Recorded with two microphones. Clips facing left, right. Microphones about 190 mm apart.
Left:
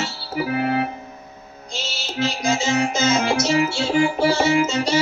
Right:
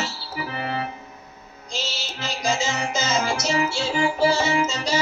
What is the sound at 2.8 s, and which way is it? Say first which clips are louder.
Music: left 5 dB; 55° left (ahead or behind).